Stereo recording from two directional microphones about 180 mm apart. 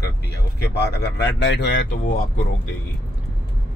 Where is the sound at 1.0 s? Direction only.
70° left (ahead or behind).